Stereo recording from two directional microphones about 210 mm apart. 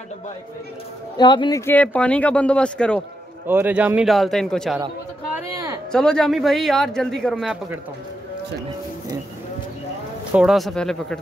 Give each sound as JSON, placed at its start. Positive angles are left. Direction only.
{"t": 1.1, "sound": "speech", "side_deg": 20}
{"t": 1.7, "sound": "speech", "side_deg": 5}
{"t": 3.4, "sound": "speech", "side_deg": -10}
{"t": 5.3, "sound": "a sound", "side_deg": -15}
{"t": 5.9, "sound": "speech", "side_deg": 5}
{"t": 10.3, "sound": "speech", "side_deg": 0}